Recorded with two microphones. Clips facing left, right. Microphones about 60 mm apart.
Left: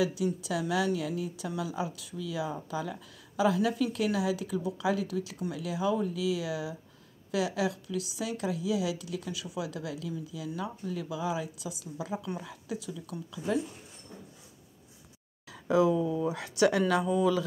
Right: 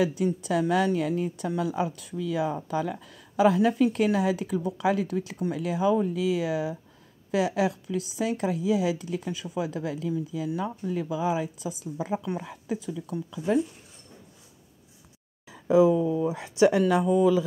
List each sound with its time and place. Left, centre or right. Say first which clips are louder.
0.0 s speech: right 4 dB; right
15.4 s speech: right 5 dB; centre